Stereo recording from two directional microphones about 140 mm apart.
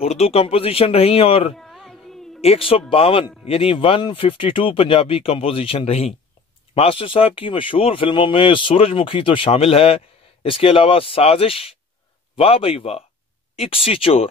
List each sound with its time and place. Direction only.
0.0 s speech: 45° left (ahead or behind)
1.6 s music: centre (ahead or behind)
2.4 s speech: 45° left (ahead or behind)